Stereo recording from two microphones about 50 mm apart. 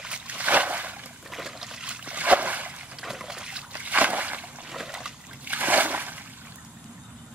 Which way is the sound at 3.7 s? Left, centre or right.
Right.